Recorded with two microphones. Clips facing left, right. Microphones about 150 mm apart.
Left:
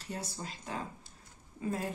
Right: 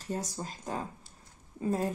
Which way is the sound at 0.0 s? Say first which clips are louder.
Right 5 dB; 45° right (ahead or behind).